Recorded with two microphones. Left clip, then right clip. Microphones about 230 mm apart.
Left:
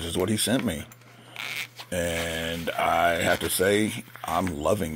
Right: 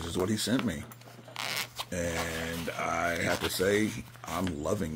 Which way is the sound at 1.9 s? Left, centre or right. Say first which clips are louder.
Left 6 dB; centre.